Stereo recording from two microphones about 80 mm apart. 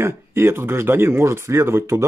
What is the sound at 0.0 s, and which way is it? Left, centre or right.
Speech, right.